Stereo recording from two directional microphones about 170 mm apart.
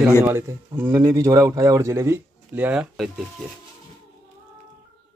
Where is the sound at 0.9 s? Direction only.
20° right (ahead or behind).